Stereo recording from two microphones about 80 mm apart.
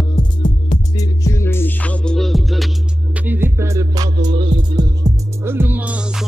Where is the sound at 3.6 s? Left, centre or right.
Right.